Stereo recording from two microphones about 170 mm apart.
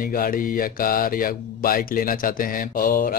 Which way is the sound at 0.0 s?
55° left (ahead or behind).